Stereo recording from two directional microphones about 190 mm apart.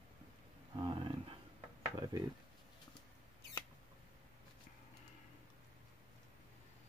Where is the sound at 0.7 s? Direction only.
25° right (ahead or behind).